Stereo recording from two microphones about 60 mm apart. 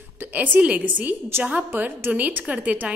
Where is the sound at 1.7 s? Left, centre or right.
Right.